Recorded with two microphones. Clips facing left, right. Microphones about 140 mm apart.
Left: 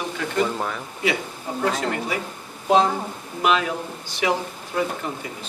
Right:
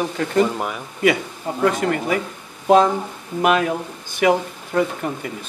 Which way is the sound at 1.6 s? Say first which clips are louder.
Right 5 dB; 60° right (ahead or behind).